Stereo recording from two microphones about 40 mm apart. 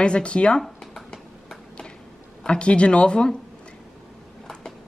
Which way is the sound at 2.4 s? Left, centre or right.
Left.